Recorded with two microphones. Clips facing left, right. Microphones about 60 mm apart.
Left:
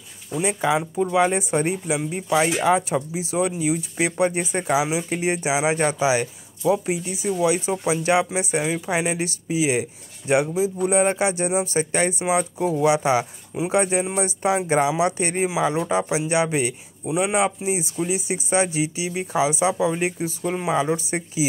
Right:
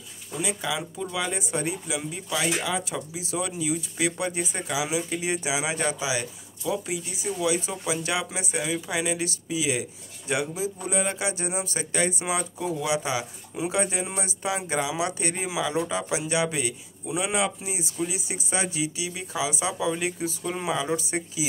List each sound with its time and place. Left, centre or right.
0.3 s speech: left
3.1 s speech: left
10.2 s speech: left
11.0 s speech: left
12.2 s speech: left
12.5 s speech: left
19.8 s speech: left